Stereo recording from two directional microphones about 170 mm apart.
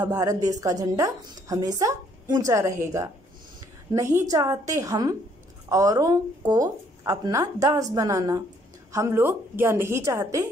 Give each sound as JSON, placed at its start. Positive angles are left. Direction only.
{"t": 0.0, "sound": "a woman's voice", "side_deg": -20}